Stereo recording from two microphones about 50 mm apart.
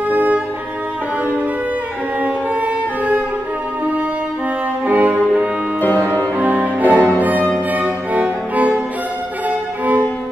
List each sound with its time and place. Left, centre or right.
0.1 s music: right
4.8 s music: right
5.8 s music: left
6.3 s music: right